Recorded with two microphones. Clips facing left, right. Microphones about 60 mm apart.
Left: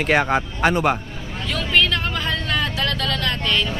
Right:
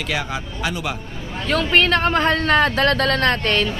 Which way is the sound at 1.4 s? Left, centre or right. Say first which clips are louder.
Right 3 dB; right.